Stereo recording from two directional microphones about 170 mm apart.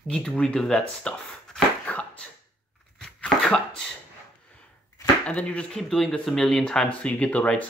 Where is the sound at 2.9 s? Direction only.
5° left (ahead or behind).